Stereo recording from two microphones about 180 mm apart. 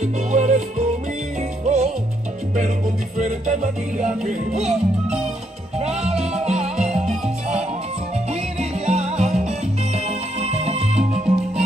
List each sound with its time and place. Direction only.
0.0 s music: 40° right (ahead or behind)
3.2 s music: 45° right (ahead or behind)
5.8 s music: 35° right (ahead or behind)